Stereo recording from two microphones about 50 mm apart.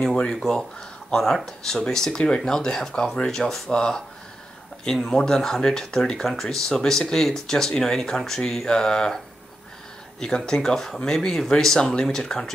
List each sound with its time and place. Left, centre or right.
0.0 s speech: centre
10.2 s speech: centre